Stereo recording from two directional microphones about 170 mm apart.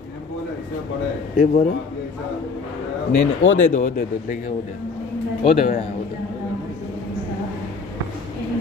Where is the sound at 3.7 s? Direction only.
45° left (ahead or behind).